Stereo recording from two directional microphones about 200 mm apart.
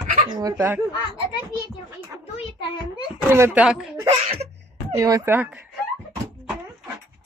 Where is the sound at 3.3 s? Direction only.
10° right (ahead or behind).